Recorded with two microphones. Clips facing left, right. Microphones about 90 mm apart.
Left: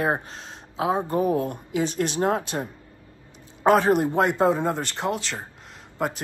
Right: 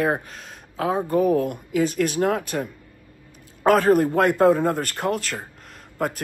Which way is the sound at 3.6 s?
30° left (ahead or behind).